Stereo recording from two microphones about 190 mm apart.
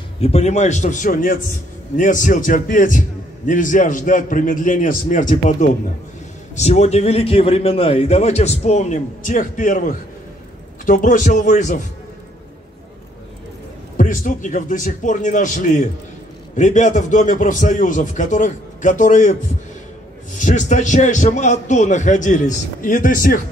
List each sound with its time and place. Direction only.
0.2 s a man's voice: 35° left (ahead or behind)
13.9 s a man's voice: 45° left (ahead or behind)
20.3 s a man's voice: 40° left (ahead or behind)